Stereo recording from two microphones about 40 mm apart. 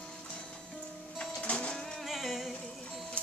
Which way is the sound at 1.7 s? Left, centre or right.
Centre.